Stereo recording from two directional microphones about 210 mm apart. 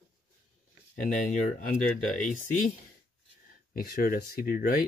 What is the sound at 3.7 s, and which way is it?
Speech, 45° left (ahead or behind).